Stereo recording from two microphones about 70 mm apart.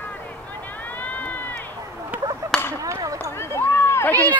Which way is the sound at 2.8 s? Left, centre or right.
Right.